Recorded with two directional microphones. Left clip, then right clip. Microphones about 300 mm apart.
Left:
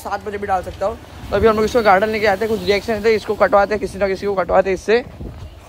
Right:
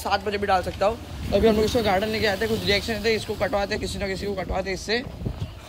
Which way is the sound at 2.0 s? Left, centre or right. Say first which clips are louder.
Left 7 dB; centre.